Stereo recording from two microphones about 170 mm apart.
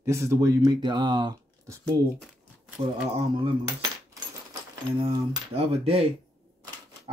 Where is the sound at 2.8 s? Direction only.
35° right (ahead or behind).